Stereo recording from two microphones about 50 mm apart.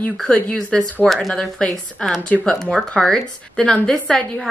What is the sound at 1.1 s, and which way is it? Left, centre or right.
A woman's voice, centre.